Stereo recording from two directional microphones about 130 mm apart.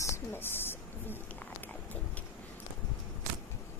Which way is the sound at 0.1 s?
15° left (ahead or behind).